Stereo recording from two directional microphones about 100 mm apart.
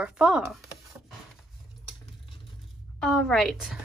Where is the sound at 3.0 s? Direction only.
5° left (ahead or behind).